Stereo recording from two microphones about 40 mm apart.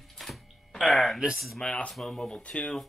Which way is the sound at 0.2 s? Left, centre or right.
Centre.